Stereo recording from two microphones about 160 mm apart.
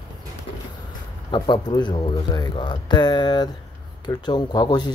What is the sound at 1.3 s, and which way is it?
Speech, 30° left (ahead or behind).